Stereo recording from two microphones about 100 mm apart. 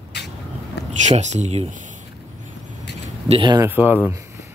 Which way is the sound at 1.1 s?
90° right.